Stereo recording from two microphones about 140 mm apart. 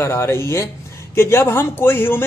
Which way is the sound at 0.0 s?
20° left (ahead or behind).